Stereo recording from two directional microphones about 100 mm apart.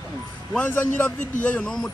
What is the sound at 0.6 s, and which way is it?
A man's voice, 15° left (ahead or behind).